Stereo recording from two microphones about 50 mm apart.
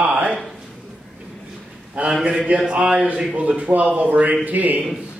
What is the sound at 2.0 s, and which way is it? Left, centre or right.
A man's voice, right.